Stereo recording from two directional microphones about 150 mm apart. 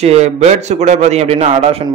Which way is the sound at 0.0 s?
45° right (ahead or behind).